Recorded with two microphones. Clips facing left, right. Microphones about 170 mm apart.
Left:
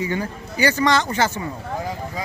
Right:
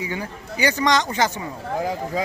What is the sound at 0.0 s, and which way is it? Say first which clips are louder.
Speech: left 4 dB; 10° right (ahead or behind).